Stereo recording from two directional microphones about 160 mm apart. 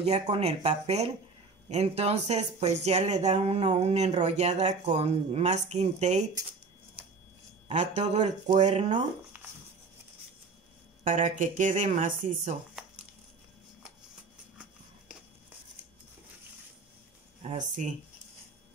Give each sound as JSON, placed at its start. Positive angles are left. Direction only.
{"t": 0.0, "sound": "speech", "side_deg": -40}
{"t": 7.6, "sound": "speech", "side_deg": -40}
{"t": 11.1, "sound": "speech", "side_deg": -50}
{"t": 12.8, "sound": "crumpling", "side_deg": -5}
{"t": 17.4, "sound": "speech", "side_deg": -45}